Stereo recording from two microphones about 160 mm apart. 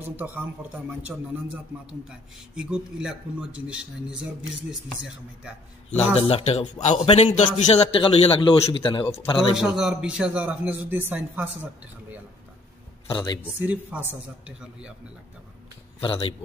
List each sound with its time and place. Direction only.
0.1 s a man's voice: 10° right (ahead or behind)
6.1 s a man's voice: 40° left (ahead or behind)
7.2 s a man's voice: 45° left (ahead or behind)
9.6 s a man's voice: 5° right (ahead or behind)
13.0 s speech: 30° left (ahead or behind)
13.4 s a man's voice: 10° right (ahead or behind)
16.0 s a man's voice: 35° left (ahead or behind)